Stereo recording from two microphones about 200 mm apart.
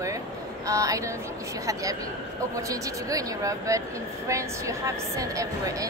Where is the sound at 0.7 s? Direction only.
15° right (ahead or behind).